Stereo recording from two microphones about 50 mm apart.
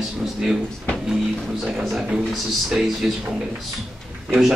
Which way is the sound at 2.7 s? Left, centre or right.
Centre.